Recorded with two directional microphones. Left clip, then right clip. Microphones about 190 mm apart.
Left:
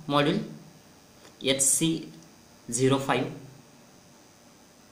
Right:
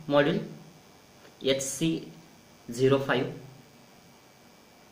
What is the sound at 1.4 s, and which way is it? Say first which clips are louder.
Speech: left 2 dB; 30° left (ahead or behind).